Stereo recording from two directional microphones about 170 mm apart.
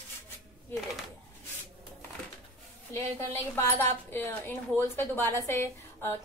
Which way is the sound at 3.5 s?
15° left (ahead or behind).